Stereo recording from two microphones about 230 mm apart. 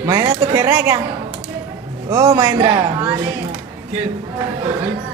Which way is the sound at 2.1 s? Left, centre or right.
Centre.